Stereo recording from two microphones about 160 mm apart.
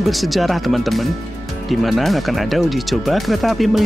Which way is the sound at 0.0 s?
Centre (ahead or behind).